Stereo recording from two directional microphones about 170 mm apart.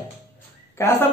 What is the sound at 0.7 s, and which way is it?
Speech, 15° left (ahead or behind).